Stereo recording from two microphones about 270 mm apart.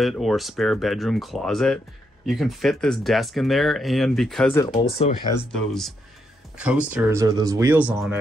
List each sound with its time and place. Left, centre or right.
0.0 s speech: centre
4.9 s speech: left
5.3 s speech: centre